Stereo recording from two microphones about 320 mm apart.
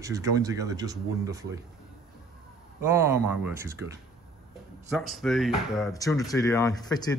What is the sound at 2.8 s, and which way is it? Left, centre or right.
Speech, centre.